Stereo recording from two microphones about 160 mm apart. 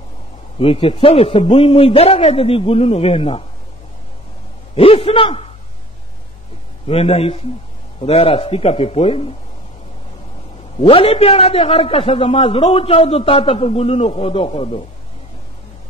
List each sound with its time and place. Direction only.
0.6 s a man's voice: 35° left (ahead or behind)
4.7 s a man's voice: 35° left (ahead or behind)
6.9 s a man's voice: 40° left (ahead or behind)
10.8 s a man's voice: 35° left (ahead or behind)